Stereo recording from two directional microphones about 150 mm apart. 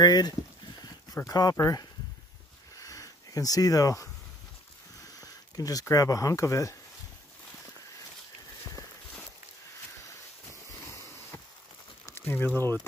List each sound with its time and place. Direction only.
0.0 s speech: 25° left (ahead or behind)
2.8 s sniff: 20° left (ahead or behind)
5.2 s speech: 25° left (ahead or behind)
10.9 s a sound: 20° left (ahead or behind)